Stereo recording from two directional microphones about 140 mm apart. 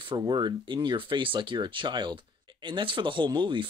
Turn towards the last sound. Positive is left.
turn(degrees=-35)  # may be behind; listen again after turning